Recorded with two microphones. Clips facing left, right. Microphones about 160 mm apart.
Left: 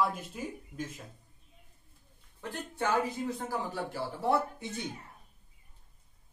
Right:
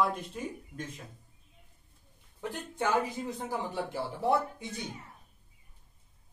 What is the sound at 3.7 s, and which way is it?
Speech, 20° right (ahead or behind).